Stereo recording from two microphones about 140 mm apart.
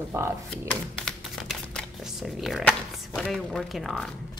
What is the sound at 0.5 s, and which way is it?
Shuffling cards, centre (ahead or behind).